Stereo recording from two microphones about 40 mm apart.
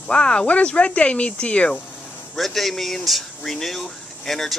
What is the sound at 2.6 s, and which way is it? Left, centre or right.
Speech, centre.